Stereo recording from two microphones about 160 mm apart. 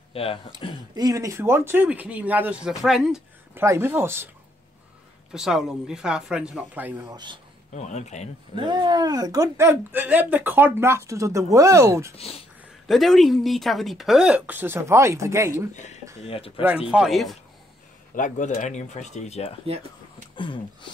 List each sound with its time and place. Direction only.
0.1 s speech: 35° left (ahead or behind)
0.6 s a sound: 30° left (ahead or behind)
0.9 s speech: 25° right (ahead or behind); by 3.6 s 5° right (ahead or behind)
3.6 s speech: 15° right (ahead or behind)
5.3 s speech: 5° right (ahead or behind)
7.1 s speech: 25° right (ahead or behind)
7.7 s speech: 45° left (ahead or behind)
8.5 s speech: 25° right (ahead or behind)
12.8 s speech: centre (ahead or behind); by 15.7 s 20° right (ahead or behind)
16.3 s a sound: 35° left (ahead or behind)
16.6 s speech: 5° right (ahead or behind)
18.1 s speech: 50° left (ahead or behind)
20.3 s a sound: 30° left (ahead or behind)